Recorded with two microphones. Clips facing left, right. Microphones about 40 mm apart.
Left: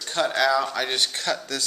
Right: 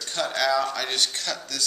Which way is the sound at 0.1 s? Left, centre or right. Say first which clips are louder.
Left 3 dB; centre.